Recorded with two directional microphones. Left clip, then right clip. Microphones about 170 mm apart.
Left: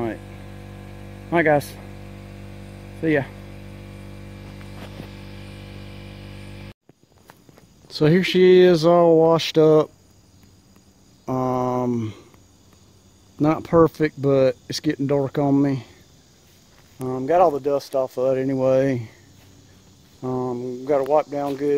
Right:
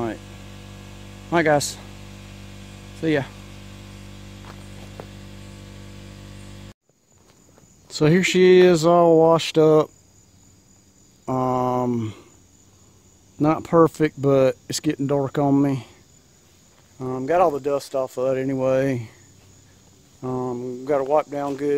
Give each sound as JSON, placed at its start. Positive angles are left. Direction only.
{"t": 0.2, "sound": "mains hum", "side_deg": -30}
{"t": 1.3, "sound": "speech", "side_deg": -10}
{"t": 3.0, "sound": "speech", "side_deg": -10}
{"t": 5.2, "sound": "hum", "side_deg": -25}
{"t": 7.9, "sound": "speech", "side_deg": -10}
{"t": 11.2, "sound": "mantra", "side_deg": -10}
{"t": 13.4, "sound": "speech", "side_deg": -10}
{"t": 17.0, "sound": "speech", "side_deg": 0}
{"t": 20.2, "sound": "speech", "side_deg": -5}